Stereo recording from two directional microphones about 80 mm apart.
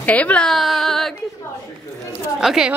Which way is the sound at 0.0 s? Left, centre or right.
Centre.